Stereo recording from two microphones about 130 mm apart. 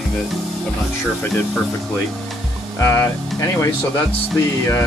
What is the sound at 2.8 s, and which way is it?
Speech, 20° left (ahead or behind).